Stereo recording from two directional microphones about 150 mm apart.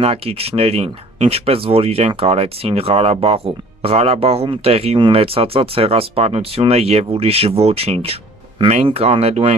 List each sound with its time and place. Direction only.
0.0 s speech: 40° right (ahead or behind)